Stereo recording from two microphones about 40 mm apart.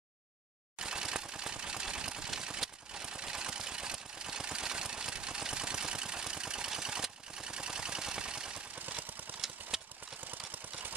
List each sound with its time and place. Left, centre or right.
0.7 s typewriter: centre
2.9 s a sound: right
5.4 s vehicle: centre
6.7 s a sound: centre
8.7 s engine: right
9.4 s engine: centre
10.2 s engine: right